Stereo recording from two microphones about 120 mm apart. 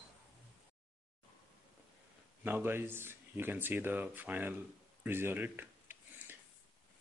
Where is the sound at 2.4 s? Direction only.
15° right (ahead or behind).